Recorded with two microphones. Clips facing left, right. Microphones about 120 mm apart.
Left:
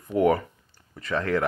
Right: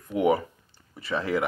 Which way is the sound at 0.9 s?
15° right (ahead or behind).